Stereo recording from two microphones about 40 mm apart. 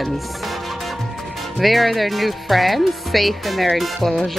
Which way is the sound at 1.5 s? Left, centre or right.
Centre.